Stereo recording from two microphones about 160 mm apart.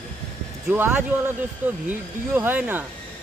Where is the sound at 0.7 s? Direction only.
10° right (ahead or behind).